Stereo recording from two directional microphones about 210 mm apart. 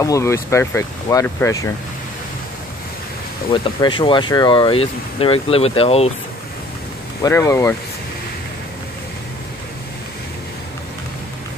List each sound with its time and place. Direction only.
0.0 s speech: 15° left (ahead or behind)
3.5 s speech: 25° left (ahead or behind)
7.2 s speech: 15° left (ahead or behind)